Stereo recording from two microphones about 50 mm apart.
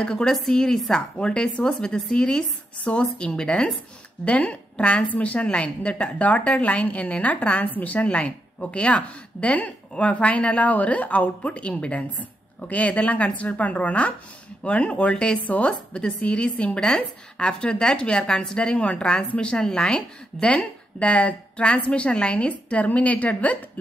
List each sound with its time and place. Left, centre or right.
0.0 s a woman's voice: centre; by 23.6 s left